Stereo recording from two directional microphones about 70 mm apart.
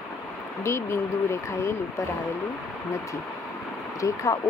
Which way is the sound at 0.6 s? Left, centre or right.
Left.